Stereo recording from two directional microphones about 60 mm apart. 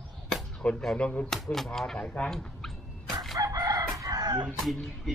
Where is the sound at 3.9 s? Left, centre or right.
Right.